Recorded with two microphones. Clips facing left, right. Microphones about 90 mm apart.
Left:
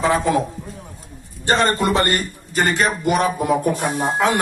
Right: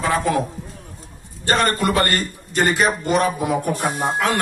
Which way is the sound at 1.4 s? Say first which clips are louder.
Left 1 dB; 20° left (ahead or behind).